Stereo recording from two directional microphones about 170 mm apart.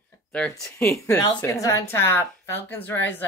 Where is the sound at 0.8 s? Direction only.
15° left (ahead or behind).